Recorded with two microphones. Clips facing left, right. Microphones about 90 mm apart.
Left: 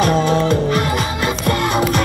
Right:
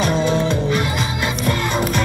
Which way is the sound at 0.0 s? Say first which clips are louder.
Left 3 dB; 50° left (ahead or behind).